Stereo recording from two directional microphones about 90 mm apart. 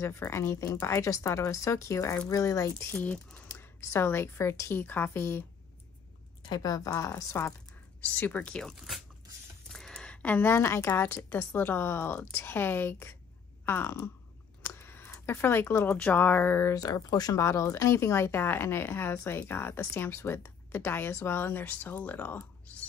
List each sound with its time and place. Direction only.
0.3 s speech: 30° left (ahead or behind)
2.9 s speech: 15° left (ahead or behind)
6.4 s speech: 45° left (ahead or behind)
8.0 s speech: 20° left (ahead or behind)
14.7 s a sound: 25° left (ahead or behind)
15.1 s speech: 25° left (ahead or behind)
15.9 s speech: 20° left (ahead or behind)
16.7 s speech: 45° left (ahead or behind); by 22.8 s 20° left (ahead or behind)